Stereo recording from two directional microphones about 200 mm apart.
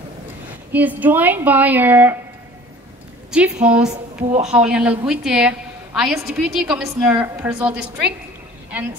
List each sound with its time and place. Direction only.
0.7 s a woman's voice: 10° right (ahead or behind)
3.3 s a woman's voice: 5° right (ahead or behind)
3.9 s speech: 35° right (ahead or behind)
4.5 s a woman's voice: 5° right (ahead or behind)